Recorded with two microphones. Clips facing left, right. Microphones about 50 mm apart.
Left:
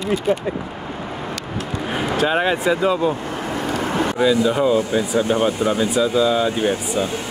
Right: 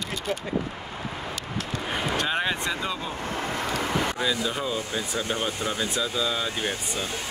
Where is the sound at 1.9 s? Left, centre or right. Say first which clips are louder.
Left 8 dB; centre.